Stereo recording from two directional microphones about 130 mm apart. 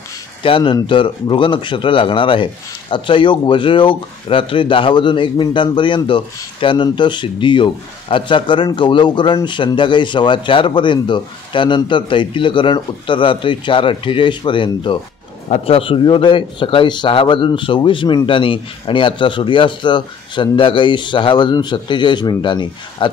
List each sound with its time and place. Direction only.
0.4 s speech: 45° left (ahead or behind)